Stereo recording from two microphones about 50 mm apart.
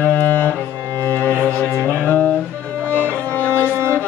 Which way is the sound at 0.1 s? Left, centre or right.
Left.